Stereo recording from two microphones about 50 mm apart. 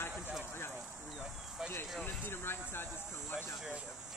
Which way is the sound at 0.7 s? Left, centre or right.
Centre.